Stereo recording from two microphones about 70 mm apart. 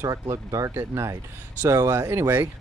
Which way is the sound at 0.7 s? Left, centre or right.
Right.